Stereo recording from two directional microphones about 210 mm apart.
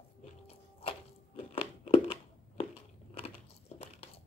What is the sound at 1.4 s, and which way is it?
Crunch, 30° left (ahead or behind).